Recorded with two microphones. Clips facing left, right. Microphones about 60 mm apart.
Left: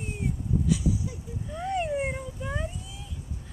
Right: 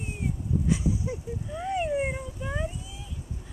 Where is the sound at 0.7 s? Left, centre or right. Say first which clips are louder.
Right 1 dB; right.